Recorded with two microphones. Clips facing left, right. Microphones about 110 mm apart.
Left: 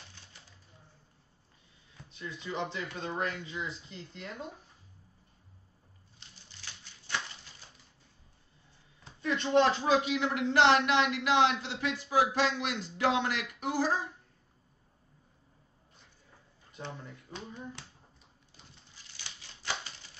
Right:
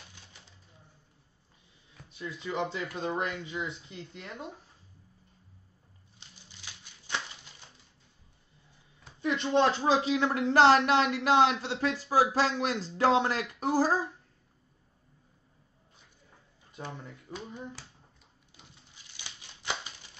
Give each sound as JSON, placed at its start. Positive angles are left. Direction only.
{"t": 2.2, "sound": "speech", "side_deg": -30}
{"t": 2.5, "sound": "speech", "side_deg": -5}
{"t": 3.0, "sound": "speech", "side_deg": -25}
{"t": 6.6, "sound": "a sound", "side_deg": -15}
{"t": 9.2, "sound": "speech", "side_deg": -20}
{"t": 19.1, "sound": "a sound", "side_deg": -15}